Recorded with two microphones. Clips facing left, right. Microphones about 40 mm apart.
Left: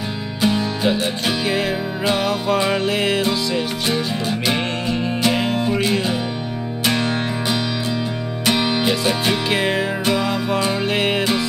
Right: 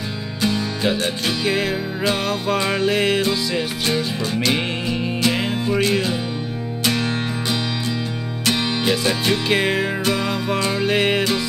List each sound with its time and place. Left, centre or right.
0.4 s music: left
0.8 s music: centre
4.8 s music: centre